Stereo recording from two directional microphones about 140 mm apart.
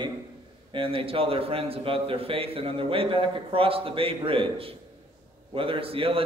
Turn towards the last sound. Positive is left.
turn(degrees=-40)  # may be behind; listen again after turning